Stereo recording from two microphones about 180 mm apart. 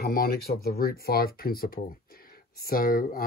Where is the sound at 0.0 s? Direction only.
55° left (ahead or behind).